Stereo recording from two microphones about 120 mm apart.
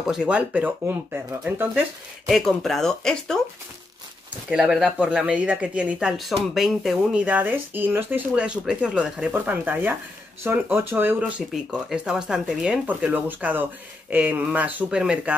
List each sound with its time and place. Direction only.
0.0 s speech: 5° right (ahead or behind)
2.2 s speech: centre (ahead or behind)
4.5 s speech: 5° right (ahead or behind)